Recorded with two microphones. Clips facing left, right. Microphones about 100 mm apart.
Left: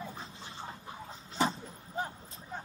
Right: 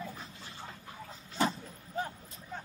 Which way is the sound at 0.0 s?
20° left (ahead or behind).